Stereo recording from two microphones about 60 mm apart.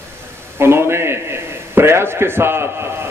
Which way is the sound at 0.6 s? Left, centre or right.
Right.